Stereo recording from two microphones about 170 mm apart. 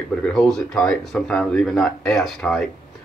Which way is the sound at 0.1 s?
5° left (ahead or behind).